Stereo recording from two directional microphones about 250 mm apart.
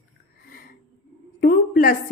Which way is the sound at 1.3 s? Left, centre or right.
Left.